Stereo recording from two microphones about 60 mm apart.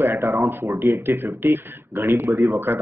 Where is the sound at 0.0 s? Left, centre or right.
Right.